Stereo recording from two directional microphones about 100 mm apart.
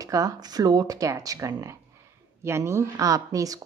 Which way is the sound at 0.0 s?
35° right (ahead or behind).